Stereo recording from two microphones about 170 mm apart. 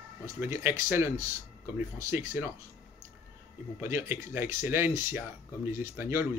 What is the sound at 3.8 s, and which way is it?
Speech, 15° right (ahead or behind).